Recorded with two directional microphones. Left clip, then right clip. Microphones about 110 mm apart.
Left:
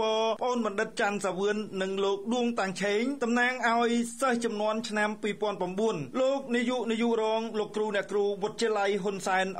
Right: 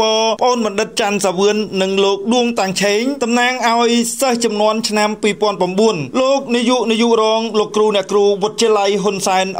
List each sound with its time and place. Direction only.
0.0 s a man's voice: 30° right (ahead or behind)
2.6 s a man's voice: 35° right (ahead or behind)